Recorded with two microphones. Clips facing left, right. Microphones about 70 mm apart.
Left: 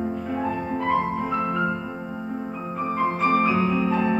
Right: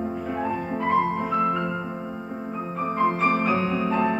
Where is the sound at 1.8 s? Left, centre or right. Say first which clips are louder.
Right 1 dB; centre.